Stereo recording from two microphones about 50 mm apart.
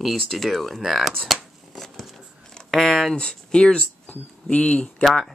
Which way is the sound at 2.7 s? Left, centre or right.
Centre.